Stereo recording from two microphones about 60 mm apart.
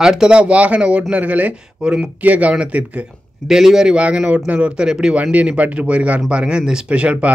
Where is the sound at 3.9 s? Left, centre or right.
Right.